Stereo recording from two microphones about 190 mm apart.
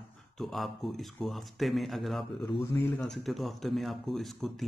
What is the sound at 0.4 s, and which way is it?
Speech, centre (ahead or behind).